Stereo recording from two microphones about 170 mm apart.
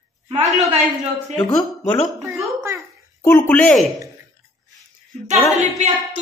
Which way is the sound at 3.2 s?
10° left (ahead or behind).